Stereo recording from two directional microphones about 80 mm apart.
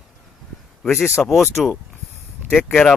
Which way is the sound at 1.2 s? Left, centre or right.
Centre.